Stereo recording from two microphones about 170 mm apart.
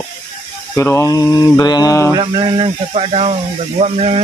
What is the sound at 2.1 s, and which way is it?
Speech, 25° right (ahead or behind).